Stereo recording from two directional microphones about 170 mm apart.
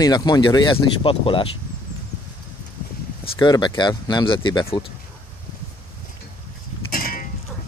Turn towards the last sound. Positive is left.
turn(degrees=55)  # may be behind; listen again after turning